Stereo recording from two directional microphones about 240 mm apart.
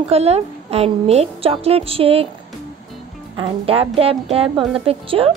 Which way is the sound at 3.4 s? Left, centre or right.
Right.